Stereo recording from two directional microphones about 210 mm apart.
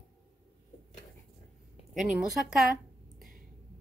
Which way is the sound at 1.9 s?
Centre (ahead or behind).